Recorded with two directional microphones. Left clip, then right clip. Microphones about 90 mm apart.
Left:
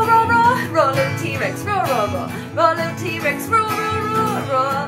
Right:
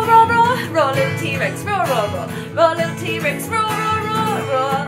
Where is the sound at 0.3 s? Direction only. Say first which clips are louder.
Even; 25° right (ahead or behind).